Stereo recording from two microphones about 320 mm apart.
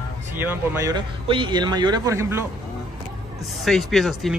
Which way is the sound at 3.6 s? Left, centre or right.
Centre.